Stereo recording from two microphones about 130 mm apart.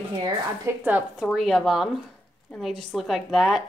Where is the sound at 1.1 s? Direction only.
5° right (ahead or behind).